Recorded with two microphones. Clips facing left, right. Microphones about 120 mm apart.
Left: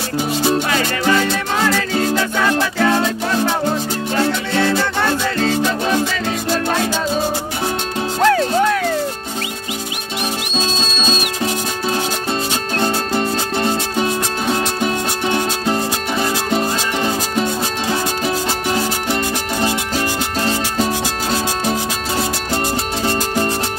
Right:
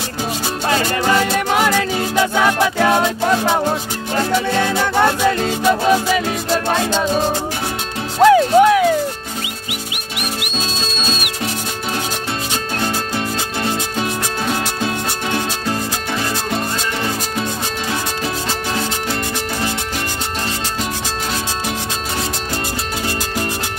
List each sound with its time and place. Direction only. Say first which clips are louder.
0.7 s music: right 1 dB; 30° right (ahead or behind)
1.5 s music: right 1 dB; 15° right (ahead or behind)
5.4 s music: right 1 dB; 15° right (ahead or behind)
8.2 s music: right 5 dB; 10° right (ahead or behind)